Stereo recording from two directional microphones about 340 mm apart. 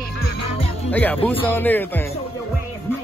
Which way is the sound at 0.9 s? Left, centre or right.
Centre.